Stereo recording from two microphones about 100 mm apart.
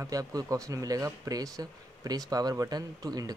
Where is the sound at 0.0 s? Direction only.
35° right (ahead or behind).